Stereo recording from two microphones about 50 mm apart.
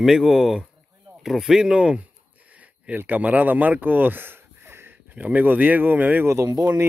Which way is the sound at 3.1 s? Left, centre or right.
Right.